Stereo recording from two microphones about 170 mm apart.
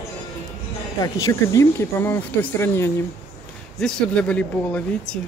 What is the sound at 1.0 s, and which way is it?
Speech, 20° left (ahead or behind).